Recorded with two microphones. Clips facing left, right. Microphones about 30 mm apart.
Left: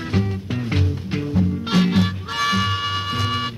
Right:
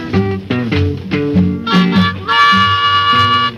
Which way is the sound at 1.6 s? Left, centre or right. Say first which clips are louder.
Right 7 dB; right.